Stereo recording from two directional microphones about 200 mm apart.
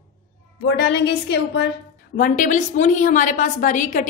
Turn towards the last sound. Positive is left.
turn(degrees=40)  # may be behind; listen again after turning